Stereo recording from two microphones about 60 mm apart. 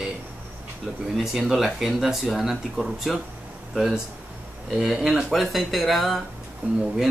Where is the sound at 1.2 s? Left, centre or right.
Centre.